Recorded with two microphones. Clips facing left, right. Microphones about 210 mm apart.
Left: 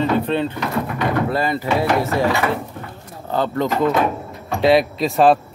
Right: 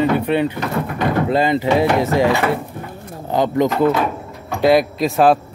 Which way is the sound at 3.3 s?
15° right (ahead or behind).